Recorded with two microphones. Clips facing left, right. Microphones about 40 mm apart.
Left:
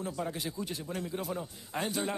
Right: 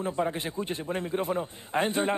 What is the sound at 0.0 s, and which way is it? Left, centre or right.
A man's voice, right.